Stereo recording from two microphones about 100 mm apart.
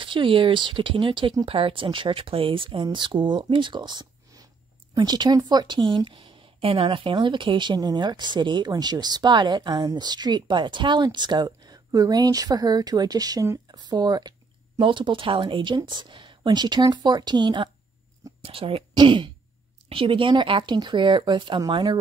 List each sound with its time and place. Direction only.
0.0 s speech: 55° right (ahead or behind)
1.4 s a woman's voice: 70° right (ahead or behind); by 14.3 s 45° right (ahead or behind)
14.8 s a woman's voice: 55° right (ahead or behind)
18.4 s speech: 70° right (ahead or behind)
18.9 s a woman's voice: 55° right (ahead or behind)